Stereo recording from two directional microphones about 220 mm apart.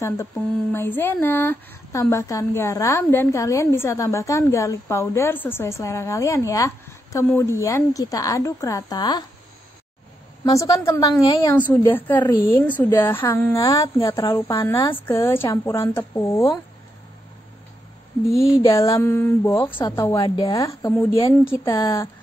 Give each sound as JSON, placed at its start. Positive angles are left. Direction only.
{"t": 0.0, "sound": "speech", "side_deg": 10}
{"t": 10.5, "sound": "a woman's voice", "side_deg": 15}
{"t": 18.6, "sound": "speech", "side_deg": 15}